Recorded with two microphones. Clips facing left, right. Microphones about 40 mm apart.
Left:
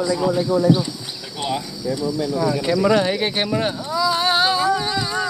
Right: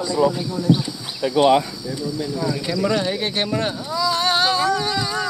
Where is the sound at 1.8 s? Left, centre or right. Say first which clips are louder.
Left 4 dB; centre.